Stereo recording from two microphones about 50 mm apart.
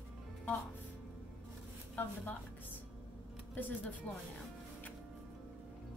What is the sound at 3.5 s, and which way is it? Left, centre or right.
Speech, left.